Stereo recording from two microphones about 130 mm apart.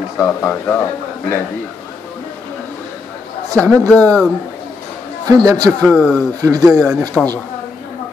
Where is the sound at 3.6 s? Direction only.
10° left (ahead or behind).